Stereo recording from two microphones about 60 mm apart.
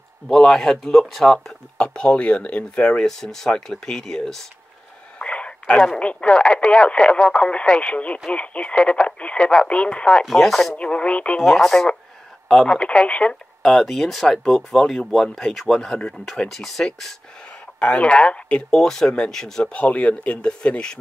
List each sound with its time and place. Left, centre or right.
0.3 s speech: centre
1.8 s speech: centre
3.0 s speech: centre
5.2 s speech: centre
10.3 s speech: centre
10.7 s speech: centre
11.4 s speech: centre
13.6 s speech: centre
17.7 s speech: left
18.8 s speech: centre
19.7 s speech: left